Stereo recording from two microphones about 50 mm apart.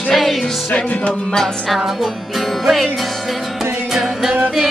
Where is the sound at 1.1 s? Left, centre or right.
Centre.